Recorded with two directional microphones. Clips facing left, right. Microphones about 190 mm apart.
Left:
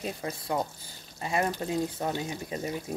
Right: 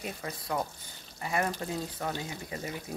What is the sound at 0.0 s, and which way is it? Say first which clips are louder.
Speech: left 4 dB; 25° left (ahead or behind).